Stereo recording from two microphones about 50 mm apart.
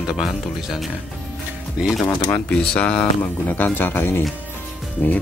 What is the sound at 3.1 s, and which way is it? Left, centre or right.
Speech, left.